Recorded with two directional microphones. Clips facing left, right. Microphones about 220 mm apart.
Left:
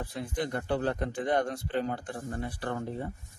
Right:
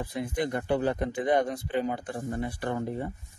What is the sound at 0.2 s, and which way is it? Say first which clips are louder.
Speech: right 3 dB; 15° right (ahead or behind).